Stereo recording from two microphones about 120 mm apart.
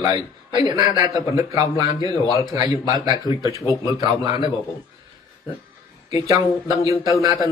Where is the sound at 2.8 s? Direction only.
35° right (ahead or behind).